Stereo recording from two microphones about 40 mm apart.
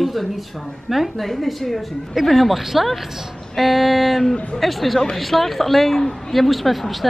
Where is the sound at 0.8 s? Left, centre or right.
Centre.